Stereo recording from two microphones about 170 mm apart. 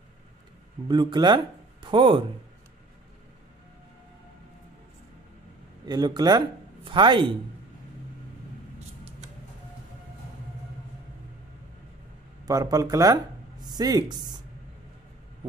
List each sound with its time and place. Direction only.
0.8 s speech: 25° right (ahead or behind)
5.9 s speech: 25° right (ahead or behind)
12.4 s speech: 20° right (ahead or behind)